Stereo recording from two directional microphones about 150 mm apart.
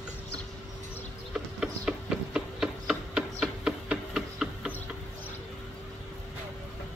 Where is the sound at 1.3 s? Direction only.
5° right (ahead or behind).